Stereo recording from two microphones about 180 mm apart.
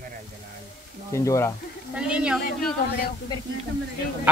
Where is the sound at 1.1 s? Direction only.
15° left (ahead or behind).